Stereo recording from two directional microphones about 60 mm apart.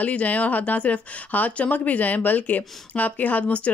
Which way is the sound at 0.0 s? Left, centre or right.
Left.